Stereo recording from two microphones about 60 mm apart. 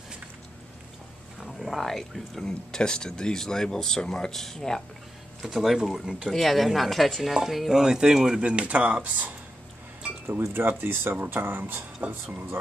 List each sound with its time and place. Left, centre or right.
1.4 s speech: centre
5.4 s speech: centre; by 9.3 s right
10.8 s speech: right